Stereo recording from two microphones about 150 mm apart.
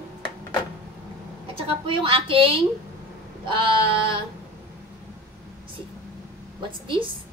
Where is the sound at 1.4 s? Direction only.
35° right (ahead or behind).